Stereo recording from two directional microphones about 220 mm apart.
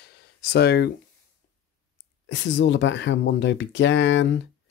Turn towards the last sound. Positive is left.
turn(degrees=55)  # may be behind; listen again after turning